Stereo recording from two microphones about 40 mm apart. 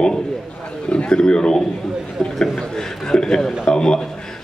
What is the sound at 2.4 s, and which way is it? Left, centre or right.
Chuckle, centre.